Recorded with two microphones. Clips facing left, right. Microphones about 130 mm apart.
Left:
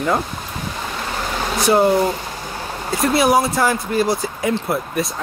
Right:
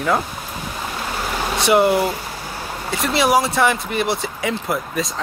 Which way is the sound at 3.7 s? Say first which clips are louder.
Left 3 dB; 70° right (ahead or behind).